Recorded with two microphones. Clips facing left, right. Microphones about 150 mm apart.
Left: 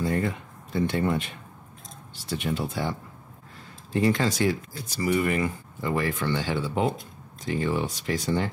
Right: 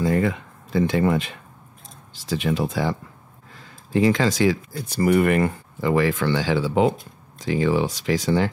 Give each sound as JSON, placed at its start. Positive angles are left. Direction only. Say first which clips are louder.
{"t": 0.0, "sound": "speech", "louder": "right 5 dB", "side_deg": -90}
{"t": 4.8, "sound": "speech", "louder": "right 6 dB", "side_deg": -60}